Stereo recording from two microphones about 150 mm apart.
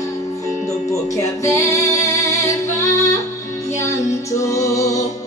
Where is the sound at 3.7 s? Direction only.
20° left (ahead or behind).